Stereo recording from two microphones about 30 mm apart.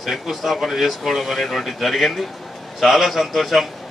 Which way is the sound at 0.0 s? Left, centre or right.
Centre.